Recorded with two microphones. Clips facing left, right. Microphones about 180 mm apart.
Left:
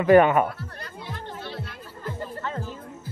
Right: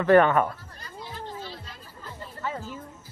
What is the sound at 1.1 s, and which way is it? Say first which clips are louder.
Music: left 1 dB; 65° left (ahead or behind).